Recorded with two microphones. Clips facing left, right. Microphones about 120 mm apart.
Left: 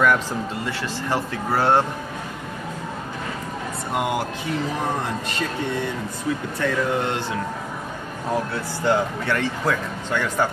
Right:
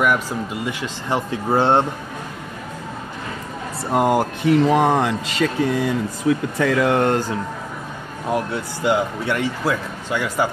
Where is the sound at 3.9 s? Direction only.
40° right (ahead or behind).